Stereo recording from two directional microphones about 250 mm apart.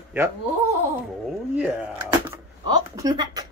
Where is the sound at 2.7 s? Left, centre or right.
Centre.